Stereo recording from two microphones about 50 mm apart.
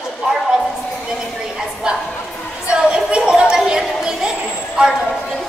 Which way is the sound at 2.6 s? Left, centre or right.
Centre.